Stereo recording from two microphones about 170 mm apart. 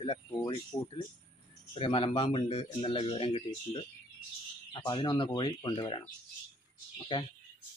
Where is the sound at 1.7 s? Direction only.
30° left (ahead or behind).